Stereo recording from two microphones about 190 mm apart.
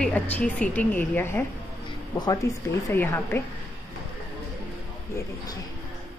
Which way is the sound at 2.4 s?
15° left (ahead or behind).